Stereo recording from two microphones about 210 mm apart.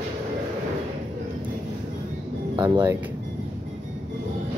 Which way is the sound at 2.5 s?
20° right (ahead or behind).